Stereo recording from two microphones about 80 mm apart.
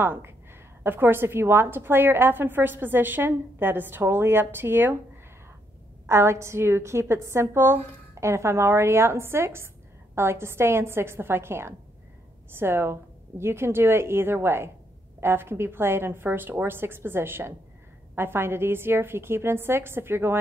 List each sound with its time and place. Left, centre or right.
0.0 s a woman's voice: right
6.0 s a woman's voice: right